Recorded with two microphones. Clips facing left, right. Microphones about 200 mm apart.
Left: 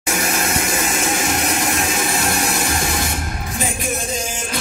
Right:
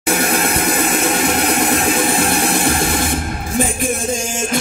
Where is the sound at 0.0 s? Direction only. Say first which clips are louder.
Right 5 dB; 60° right (ahead or behind).